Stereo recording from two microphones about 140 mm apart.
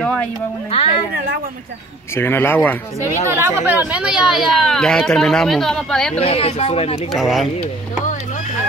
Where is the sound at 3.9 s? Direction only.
5° right (ahead or behind).